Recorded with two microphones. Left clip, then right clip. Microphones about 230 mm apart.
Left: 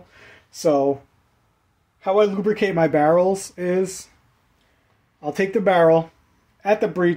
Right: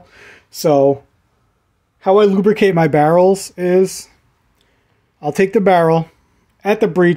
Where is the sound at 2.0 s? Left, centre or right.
Right.